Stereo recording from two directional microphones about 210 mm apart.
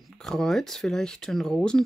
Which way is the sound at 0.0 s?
Centre (ahead or behind).